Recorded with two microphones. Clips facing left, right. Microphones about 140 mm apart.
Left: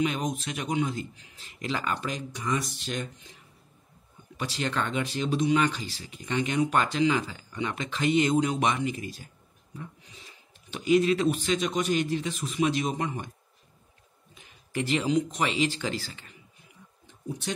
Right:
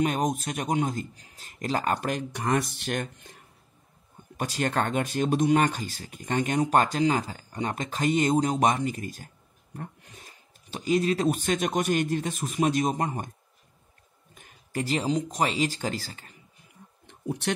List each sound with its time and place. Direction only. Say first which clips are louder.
0.0 s speech: right 3 dB; 45° right (ahead or behind)
14.3 s speech: even; 50° right (ahead or behind)
17.1 s a sound: right 5 dB; 65° right (ahead or behind)